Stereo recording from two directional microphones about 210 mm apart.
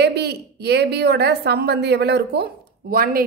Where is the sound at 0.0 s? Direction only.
50° right (ahead or behind).